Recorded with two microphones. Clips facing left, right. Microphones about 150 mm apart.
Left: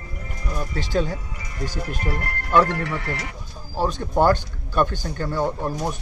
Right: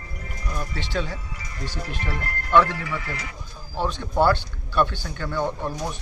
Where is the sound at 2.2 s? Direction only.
65° left (ahead or behind).